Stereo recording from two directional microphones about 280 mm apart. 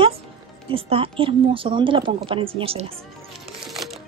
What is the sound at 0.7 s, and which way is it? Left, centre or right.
Speech, centre.